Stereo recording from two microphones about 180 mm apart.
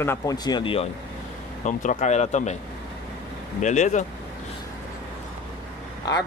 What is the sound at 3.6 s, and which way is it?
Speech, 40° left (ahead or behind).